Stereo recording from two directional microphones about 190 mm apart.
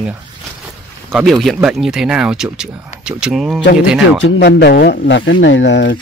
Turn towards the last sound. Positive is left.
turn(degrees=70)  # may be behind; listen again after turning